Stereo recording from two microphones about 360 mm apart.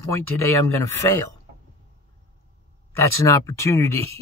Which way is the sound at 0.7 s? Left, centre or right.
Centre.